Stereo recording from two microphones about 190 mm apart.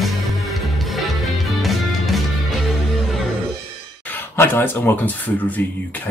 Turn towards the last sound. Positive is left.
turn(degrees=10)  # may be behind; listen again after turning